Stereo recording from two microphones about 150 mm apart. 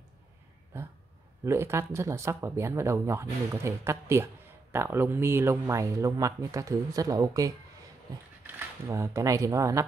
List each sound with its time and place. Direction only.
0.7 s a sound: 15° right (ahead or behind)
1.4 s speech: 20° right (ahead or behind)
8.5 s speech: 20° right (ahead or behind)